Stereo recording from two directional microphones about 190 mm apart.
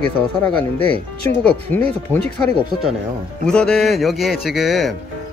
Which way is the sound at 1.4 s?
10° left (ahead or behind).